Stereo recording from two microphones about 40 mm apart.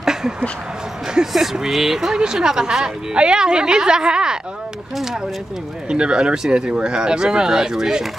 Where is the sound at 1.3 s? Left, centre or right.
Centre.